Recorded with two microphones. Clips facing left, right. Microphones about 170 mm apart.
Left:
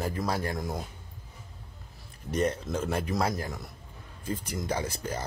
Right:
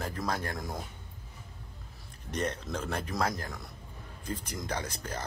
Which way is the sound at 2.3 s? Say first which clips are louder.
Left 5 dB; 5° left (ahead or behind).